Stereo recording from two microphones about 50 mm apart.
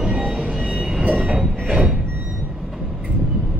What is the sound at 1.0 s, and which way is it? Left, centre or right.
Train, right.